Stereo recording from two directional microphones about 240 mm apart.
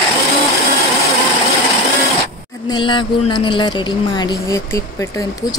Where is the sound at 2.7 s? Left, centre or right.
Centre.